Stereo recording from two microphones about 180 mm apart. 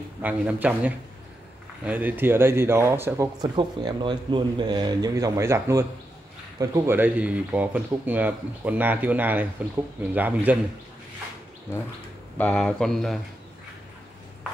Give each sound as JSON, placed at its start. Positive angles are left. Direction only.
{"t": 0.2, "sound": "speech", "side_deg": -10}
{"t": 12.4, "sound": "speech", "side_deg": 5}